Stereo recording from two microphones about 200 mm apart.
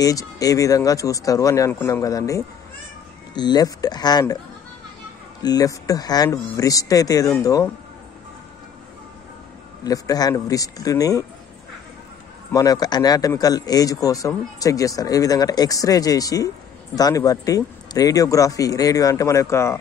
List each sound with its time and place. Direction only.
0.0 s a man's voice: 15° left (ahead or behind)
5.4 s a man's voice: 20° left (ahead or behind)
9.8 s a man's voice: 20° left (ahead or behind)
12.5 s a man's voice: 20° left (ahead or behind)